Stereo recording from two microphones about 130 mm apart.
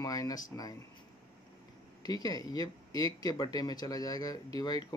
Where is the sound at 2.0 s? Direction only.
30° left (ahead or behind).